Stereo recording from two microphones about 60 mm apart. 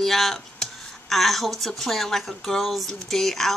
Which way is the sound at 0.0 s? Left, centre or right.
Centre.